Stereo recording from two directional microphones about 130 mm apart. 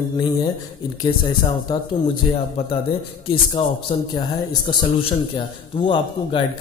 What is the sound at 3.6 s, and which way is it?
A man's voice, 45° left (ahead or behind).